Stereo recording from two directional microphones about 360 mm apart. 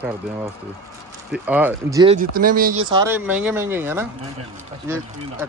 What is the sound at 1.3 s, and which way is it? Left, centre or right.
Speech, centre.